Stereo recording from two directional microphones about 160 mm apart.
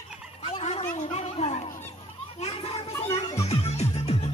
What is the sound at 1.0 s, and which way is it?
Chatter, 45° left (ahead or behind).